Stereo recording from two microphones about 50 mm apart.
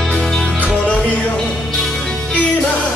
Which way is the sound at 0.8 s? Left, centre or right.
Left.